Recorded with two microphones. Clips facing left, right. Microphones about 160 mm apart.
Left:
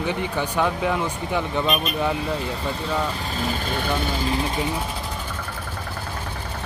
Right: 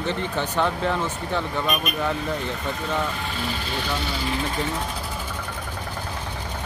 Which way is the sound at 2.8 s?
40° left (ahead or behind).